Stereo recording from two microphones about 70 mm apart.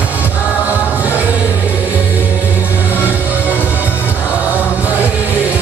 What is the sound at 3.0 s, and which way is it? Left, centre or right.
Music, right.